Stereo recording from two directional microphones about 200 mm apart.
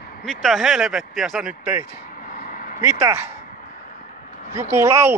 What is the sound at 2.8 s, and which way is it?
Speech, 15° right (ahead or behind).